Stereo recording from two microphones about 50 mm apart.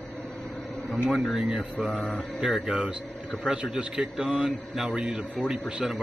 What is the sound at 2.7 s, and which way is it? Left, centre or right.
A man's voice, right.